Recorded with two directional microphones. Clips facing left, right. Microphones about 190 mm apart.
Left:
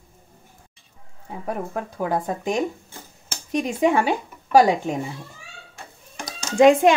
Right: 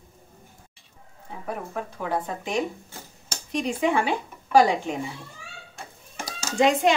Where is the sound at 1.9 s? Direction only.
40° left (ahead or behind).